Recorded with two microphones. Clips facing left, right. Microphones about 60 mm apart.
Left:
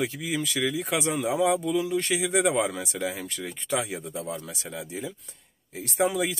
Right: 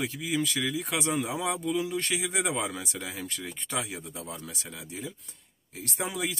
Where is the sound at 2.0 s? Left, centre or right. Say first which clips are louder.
Left 5 dB; centre.